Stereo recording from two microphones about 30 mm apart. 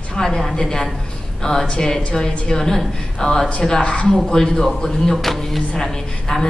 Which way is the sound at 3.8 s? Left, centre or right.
Left.